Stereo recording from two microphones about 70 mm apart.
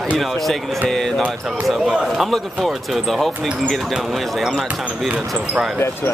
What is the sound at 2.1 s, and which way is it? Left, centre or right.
Speech, centre.